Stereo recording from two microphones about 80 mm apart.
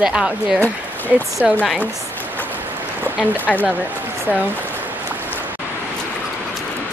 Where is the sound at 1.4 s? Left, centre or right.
Centre.